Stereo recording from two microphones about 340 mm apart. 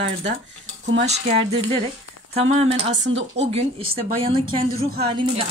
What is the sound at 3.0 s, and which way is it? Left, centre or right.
Speech, right.